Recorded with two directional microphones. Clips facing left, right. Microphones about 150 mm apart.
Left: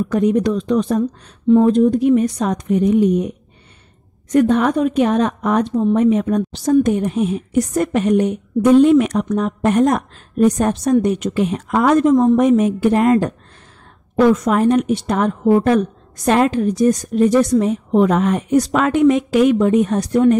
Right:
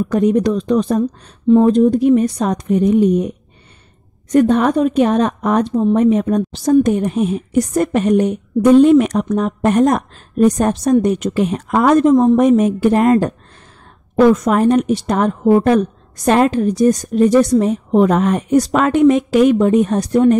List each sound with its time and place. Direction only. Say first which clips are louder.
0.0 s a woman's voice: right 2 dB; 40° right (ahead or behind)
4.3 s a woman's voice: right 2 dB; 35° right (ahead or behind)
14.3 s a woman's voice: right 2 dB; 40° right (ahead or behind)